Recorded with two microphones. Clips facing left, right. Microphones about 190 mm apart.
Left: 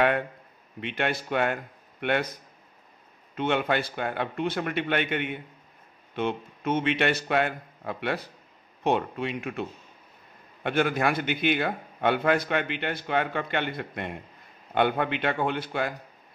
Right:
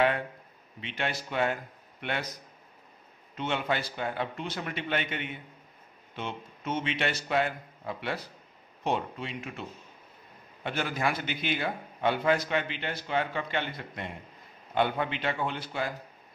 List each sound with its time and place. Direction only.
0.7 s a man's voice: 55° left (ahead or behind)
3.3 s a man's voice: 55° left (ahead or behind)